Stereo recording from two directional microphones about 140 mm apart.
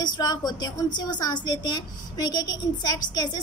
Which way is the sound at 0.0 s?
30° left (ahead or behind).